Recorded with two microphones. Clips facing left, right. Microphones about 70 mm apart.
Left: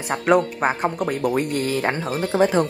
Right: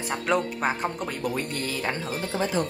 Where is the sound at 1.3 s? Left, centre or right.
Left.